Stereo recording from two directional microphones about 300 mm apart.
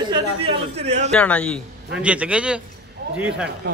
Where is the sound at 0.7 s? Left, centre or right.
Right.